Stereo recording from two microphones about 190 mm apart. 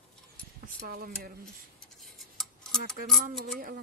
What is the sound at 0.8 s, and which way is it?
Speech, 50° right (ahead or behind).